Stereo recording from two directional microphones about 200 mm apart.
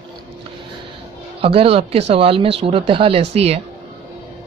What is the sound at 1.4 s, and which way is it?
Speech, 30° right (ahead or behind).